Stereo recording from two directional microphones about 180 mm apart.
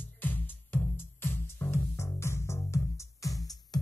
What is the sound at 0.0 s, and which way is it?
Music, 10° left (ahead or behind).